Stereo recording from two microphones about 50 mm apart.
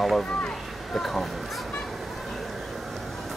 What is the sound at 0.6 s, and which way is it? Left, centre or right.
Children playing, centre.